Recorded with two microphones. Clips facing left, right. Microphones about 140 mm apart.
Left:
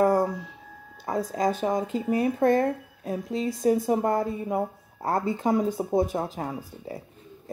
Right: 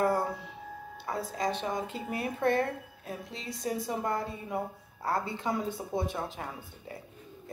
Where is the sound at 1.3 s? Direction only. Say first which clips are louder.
Left 7 dB; 45° left (ahead or behind).